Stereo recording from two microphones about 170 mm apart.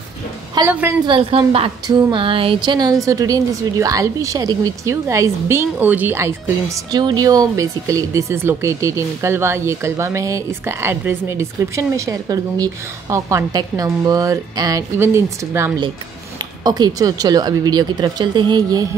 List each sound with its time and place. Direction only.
0.7 s a woman's voice: 10° right (ahead or behind)
1.0 s a woman's voice: 30° right (ahead or behind)